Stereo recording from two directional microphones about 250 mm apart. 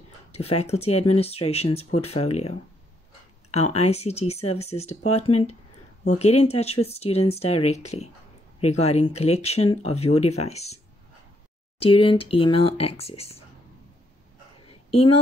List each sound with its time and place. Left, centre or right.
0.3 s speech: left
3.7 s speech: left
11.8 s speech: left
14.7 s a sound: left